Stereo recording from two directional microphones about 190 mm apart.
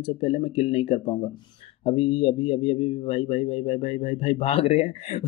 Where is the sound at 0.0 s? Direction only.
30° left (ahead or behind).